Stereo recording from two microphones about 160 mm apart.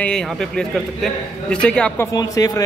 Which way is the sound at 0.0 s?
5° left (ahead or behind).